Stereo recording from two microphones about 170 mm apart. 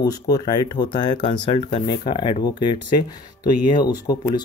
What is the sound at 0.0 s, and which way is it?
Speech, 20° left (ahead or behind).